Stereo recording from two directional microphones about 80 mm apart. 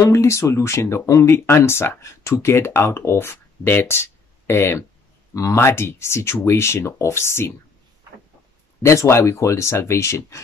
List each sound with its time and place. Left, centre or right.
0.0 s speech: left
8.8 s speech: left